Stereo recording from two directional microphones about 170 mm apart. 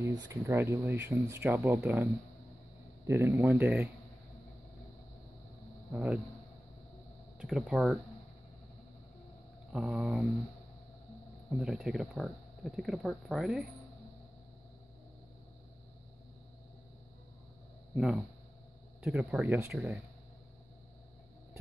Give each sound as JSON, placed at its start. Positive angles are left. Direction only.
{"t": 0.0, "sound": "speech", "side_deg": -15}
{"t": 3.1, "sound": "speech", "side_deg": -15}
{"t": 5.9, "sound": "speech", "side_deg": -5}
{"t": 7.3, "sound": "speech", "side_deg": 0}
{"t": 9.7, "sound": "mantra", "side_deg": -5}
{"t": 11.5, "sound": "speech", "side_deg": -5}
{"t": 17.9, "sound": "speech", "side_deg": -5}